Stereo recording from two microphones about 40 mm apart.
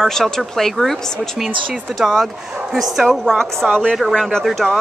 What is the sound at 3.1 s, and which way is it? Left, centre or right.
Speech, centre.